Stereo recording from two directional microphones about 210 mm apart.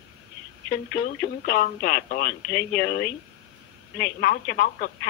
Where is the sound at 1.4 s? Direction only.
45° left (ahead or behind).